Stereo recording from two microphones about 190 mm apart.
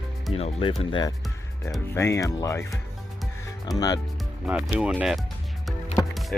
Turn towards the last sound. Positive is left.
turn(degrees=20)  # may be behind; listen again after turning